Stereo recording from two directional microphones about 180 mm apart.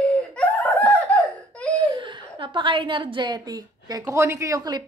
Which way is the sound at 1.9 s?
25° right (ahead or behind).